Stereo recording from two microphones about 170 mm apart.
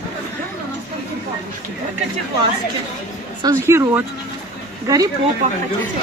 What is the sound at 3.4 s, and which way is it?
Speech, 20° right (ahead or behind).